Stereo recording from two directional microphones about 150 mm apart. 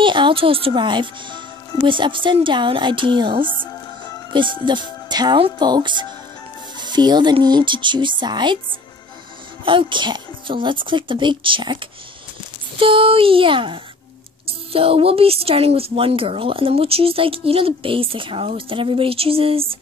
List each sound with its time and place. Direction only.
0.0 s speech: 35° right (ahead or behind)
9.7 s speech: 35° right (ahead or behind)